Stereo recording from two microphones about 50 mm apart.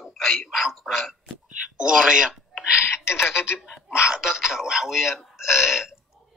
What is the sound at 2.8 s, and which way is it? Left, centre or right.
Speech, left.